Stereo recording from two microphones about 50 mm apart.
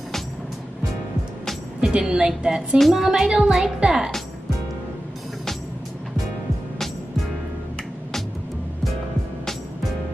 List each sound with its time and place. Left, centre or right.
1.8 s a woman's voice: centre
2.8 s a woman's voice: centre